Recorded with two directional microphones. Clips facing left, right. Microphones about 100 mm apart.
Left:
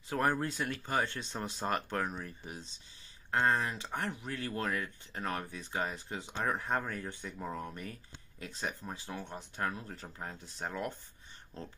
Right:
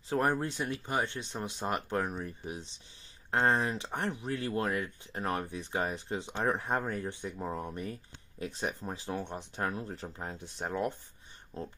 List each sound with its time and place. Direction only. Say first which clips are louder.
0.1 s speech: right 2 dB; 25° right (ahead or behind)